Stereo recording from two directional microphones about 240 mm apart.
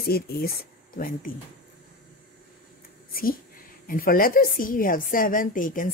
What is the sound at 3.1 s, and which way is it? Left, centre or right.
Speech, left.